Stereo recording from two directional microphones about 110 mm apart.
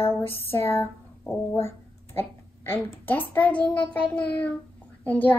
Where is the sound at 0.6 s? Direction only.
20° left (ahead or behind).